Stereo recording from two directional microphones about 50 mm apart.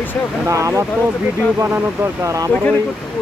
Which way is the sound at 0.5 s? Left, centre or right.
Right.